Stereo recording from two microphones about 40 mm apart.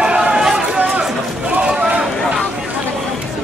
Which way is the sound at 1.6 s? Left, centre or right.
Right.